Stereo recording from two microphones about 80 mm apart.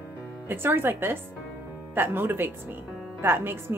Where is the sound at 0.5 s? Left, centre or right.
Right.